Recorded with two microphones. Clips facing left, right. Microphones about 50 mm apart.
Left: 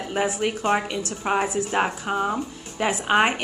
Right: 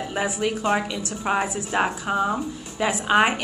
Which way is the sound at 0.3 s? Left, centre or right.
Left.